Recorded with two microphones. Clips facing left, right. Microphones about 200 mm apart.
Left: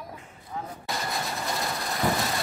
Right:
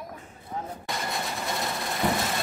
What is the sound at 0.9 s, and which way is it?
Vehicle, centre (ahead or behind).